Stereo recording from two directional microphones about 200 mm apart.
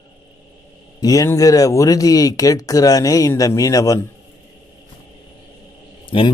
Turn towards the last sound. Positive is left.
turn(degrees=25)  # may be behind; listen again after turning